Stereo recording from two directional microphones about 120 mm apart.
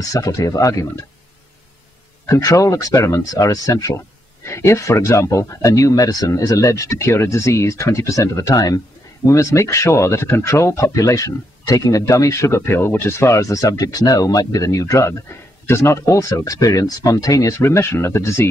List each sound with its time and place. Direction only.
0.1 s speech: 30° left (ahead or behind)
2.2 s speech: 25° left (ahead or behind)